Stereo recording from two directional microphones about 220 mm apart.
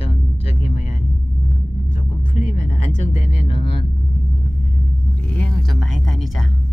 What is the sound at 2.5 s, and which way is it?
Music, 35° left (ahead or behind).